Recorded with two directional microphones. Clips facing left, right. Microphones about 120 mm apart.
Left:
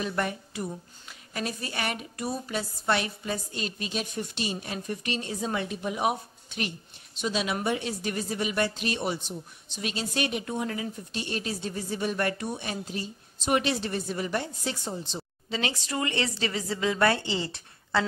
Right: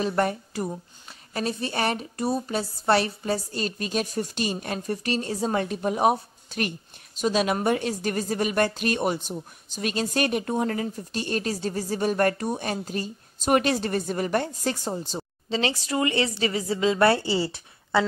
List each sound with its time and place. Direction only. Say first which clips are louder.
0.0 s a woman's voice: right 6 dB; 40° right (ahead or behind)
1.3 s a woman's voice: right 5 dB; 30° right (ahead or behind)